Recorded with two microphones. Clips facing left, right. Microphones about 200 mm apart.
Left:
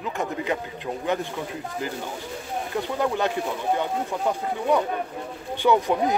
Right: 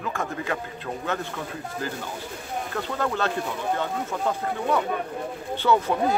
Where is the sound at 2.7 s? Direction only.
15° left (ahead or behind).